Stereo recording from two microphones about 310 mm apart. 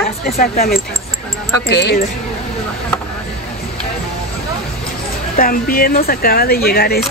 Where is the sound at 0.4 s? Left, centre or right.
Left.